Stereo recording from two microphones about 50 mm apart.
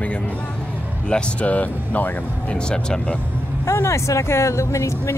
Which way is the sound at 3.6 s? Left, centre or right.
Left.